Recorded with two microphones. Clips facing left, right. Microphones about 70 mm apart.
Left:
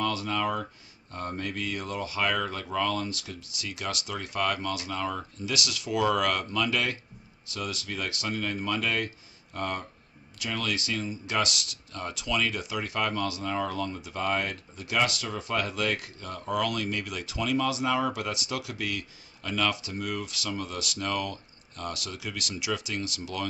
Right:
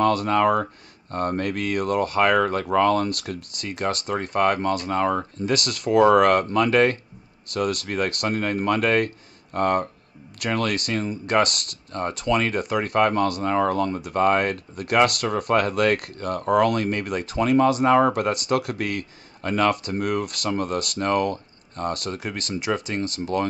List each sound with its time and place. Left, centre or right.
0.0 s speech: right